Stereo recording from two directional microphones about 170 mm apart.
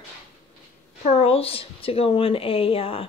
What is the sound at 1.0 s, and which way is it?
A woman's voice, 35° left (ahead or behind).